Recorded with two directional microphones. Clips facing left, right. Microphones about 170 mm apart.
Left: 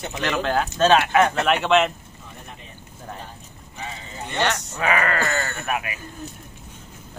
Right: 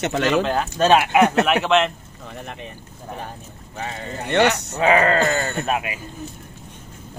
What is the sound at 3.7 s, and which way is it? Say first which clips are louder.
Speech: right 5 dB; 65° right (ahead or behind).